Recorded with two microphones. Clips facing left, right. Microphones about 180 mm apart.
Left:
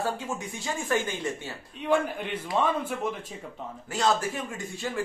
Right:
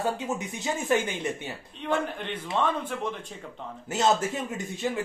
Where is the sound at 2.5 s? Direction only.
10° left (ahead or behind).